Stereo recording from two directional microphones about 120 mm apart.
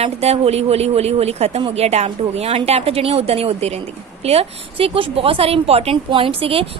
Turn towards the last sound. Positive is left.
turn(degrees=-50)  # may be behind; listen again after turning